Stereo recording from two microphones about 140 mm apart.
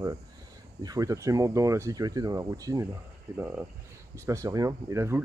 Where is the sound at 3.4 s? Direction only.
15° right (ahead or behind).